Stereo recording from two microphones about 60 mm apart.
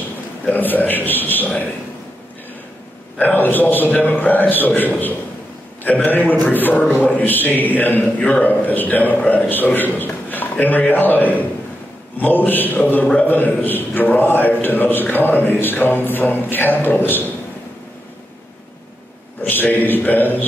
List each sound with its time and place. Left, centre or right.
0.5 s a man's voice: left
3.2 s a man's voice: left
19.4 s a man's voice: left